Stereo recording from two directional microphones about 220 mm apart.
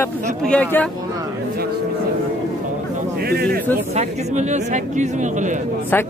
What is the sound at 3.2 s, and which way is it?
Speech, 45° right (ahead or behind).